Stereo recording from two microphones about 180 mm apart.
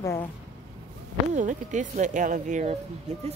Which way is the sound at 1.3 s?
45° right (ahead or behind).